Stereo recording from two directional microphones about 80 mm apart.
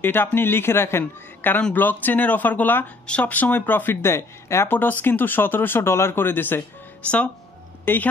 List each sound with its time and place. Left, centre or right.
0.0 s speech: left
7.8 s speech: left